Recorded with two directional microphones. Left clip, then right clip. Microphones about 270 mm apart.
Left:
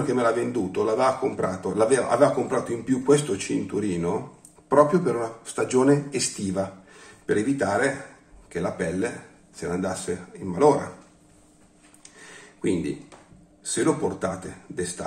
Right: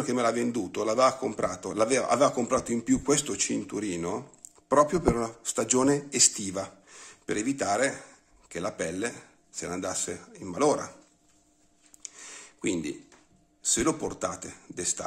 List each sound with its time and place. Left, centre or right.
0.1 s speech: right
12.2 s a sound: right
13.7 s speech: right